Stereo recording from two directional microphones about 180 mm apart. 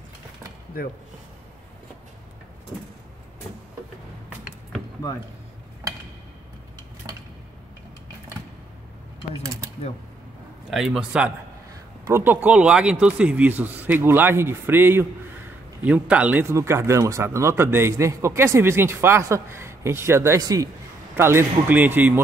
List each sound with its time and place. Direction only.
9.3 s speech: 20° right (ahead or behind)
10.7 s a man's voice: 5° right (ahead or behind)